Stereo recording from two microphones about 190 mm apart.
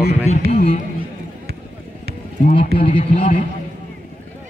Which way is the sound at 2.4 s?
45° left (ahead or behind).